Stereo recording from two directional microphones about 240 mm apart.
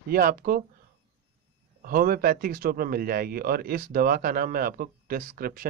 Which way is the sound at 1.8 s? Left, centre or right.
Right.